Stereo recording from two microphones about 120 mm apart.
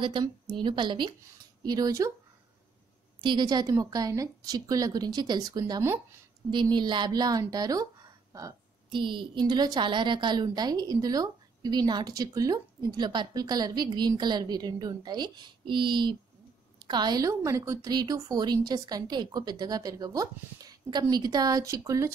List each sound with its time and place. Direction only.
0.0 s a woman's voice: 40° right (ahead or behind)
3.2 s a woman's voice: 40° right (ahead or behind)
6.5 s a woman's voice: 40° right (ahead or behind)
8.9 s a woman's voice: 45° right (ahead or behind); by 22.1 s 25° right (ahead or behind)